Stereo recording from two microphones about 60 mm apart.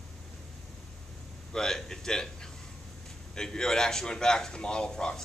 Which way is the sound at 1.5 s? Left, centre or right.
Centre.